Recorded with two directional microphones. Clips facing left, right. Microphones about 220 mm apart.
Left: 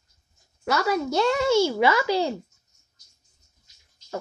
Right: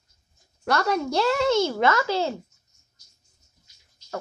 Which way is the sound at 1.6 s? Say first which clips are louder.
Left 1 dB; 10° left (ahead or behind).